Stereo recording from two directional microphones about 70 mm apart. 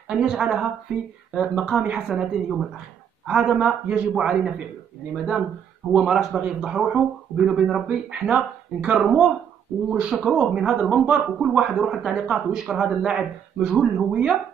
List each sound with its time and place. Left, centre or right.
0.1 s a man's voice: centre